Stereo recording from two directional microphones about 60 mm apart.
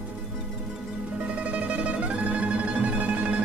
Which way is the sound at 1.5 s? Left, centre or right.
Right.